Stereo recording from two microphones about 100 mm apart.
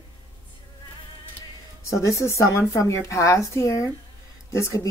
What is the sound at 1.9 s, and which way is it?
Speech, 30° left (ahead or behind).